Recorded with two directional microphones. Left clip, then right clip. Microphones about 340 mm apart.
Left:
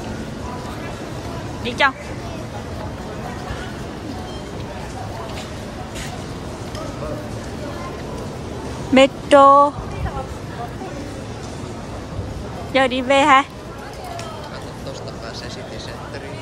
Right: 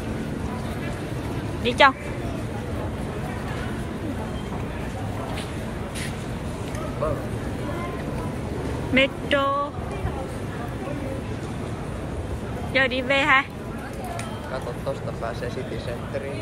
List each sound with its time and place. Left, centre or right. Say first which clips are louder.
1.6 s speech: right 1 dB; centre
8.9 s speech: left 9 dB; centre
12.7 s a woman's voice: left 5 dB; centre